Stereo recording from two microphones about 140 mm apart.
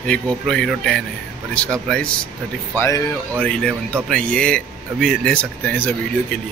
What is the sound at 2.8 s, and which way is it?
Speech, 20° left (ahead or behind).